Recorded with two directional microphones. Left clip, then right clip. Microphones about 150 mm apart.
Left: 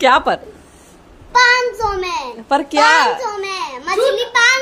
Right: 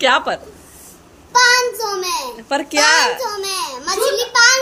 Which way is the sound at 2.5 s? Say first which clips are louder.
Left 2 dB; 35° left (ahead or behind).